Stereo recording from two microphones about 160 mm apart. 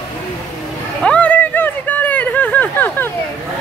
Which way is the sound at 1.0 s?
10° left (ahead or behind).